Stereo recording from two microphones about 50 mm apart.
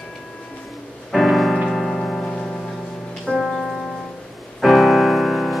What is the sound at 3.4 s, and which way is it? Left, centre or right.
Music, centre.